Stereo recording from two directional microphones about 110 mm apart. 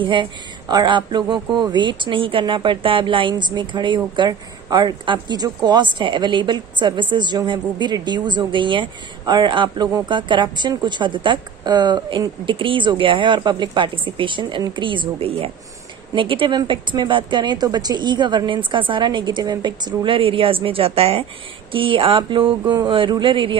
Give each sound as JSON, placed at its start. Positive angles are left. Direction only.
{"t": 0.0, "sound": "a woman's voice", "side_deg": -50}